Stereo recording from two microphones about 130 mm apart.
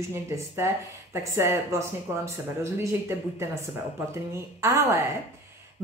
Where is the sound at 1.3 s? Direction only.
20° right (ahead or behind).